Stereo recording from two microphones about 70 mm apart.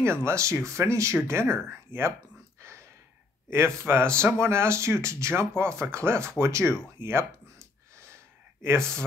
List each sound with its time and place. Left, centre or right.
0.0 s speech: right
2.6 s a sound: right
3.4 s speech: right